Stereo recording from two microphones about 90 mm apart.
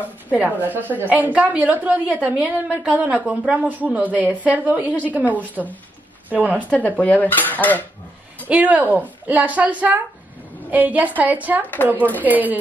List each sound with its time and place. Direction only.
0.3 s a woman's voice: 20° right (ahead or behind)
7.0 s dishes: 15° left (ahead or behind)
8.5 s a woman's voice: 15° right (ahead or behind)
11.6 s dishes: 20° left (ahead or behind)
12.2 s a woman's voice: 20° right (ahead or behind)